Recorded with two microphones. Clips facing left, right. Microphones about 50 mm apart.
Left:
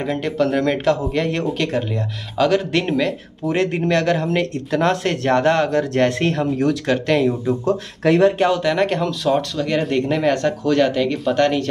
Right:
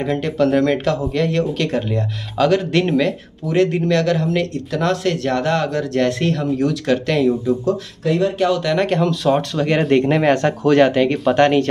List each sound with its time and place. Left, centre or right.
0.0 s speech: centre
1.1 s speech: centre
2.3 s speech: centre
3.4 s speech: left
8.0 s speech: left
8.6 s speech: centre
10.0 s speech: right